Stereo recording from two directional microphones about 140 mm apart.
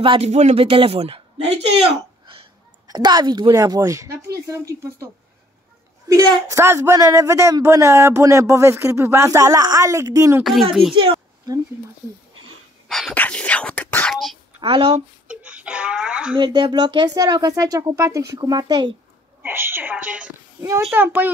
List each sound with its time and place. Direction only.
0.0 s a woman's voice: 35° right (ahead or behind)
0.3 s a man's voice: 50° right (ahead or behind)
2.9 s speech: 30° right (ahead or behind)
6.5 s speech: 20° right (ahead or behind)
10.4 s a child's voice: centre (ahead or behind)
12.8 s dog: centre (ahead or behind)
13.1 s a sound: 10° left (ahead or behind)
14.1 s sneeze: centre (ahead or behind)
14.6 s a woman's voice: 40° right (ahead or behind)
15.2 s wail: 10° right (ahead or behind)
16.3 s speech: 30° right (ahead or behind)
19.4 s a woman's voice: 15° right (ahead or behind)